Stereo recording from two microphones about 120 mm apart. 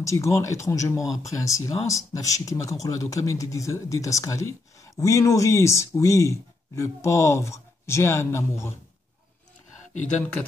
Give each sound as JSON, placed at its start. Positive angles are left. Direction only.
{"t": 0.0, "sound": "speech", "side_deg": 25}